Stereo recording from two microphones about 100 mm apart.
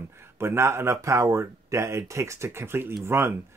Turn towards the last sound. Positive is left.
turn(degrees=-25)  # may be behind; listen again after turning